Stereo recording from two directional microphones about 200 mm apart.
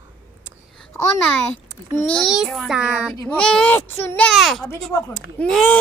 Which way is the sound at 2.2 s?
Centre (ahead or behind).